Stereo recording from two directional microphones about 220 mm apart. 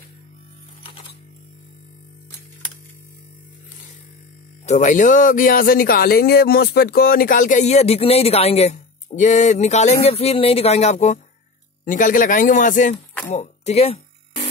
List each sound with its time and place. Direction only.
4.6 s speech: 35° left (ahead or behind)
13.3 s music: 30° left (ahead or behind)